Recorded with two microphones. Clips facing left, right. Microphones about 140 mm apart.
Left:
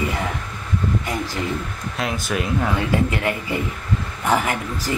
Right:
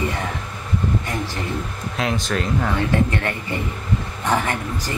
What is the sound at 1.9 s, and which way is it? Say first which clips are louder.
Speech: right 1 dB; 5° left (ahead or behind).